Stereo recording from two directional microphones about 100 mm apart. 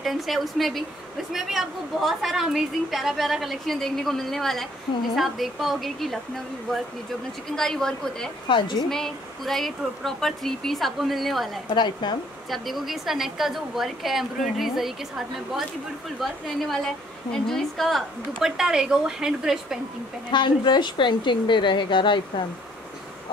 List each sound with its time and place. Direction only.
0.0 s a woman's voice: centre (ahead or behind)
8.5 s speech: 55° left (ahead or behind)
8.8 s a woman's voice: 5° left (ahead or behind)
11.7 s speech: 50° left (ahead or behind)
12.4 s a woman's voice: centre (ahead or behind)
20.2 s speech: 50° left (ahead or behind)